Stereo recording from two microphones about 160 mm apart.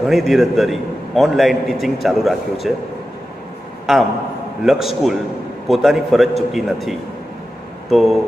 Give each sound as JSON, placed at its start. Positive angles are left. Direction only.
{"t": 0.0, "sound": "a man's voice", "side_deg": 0}
{"t": 3.9, "sound": "a man's voice", "side_deg": 0}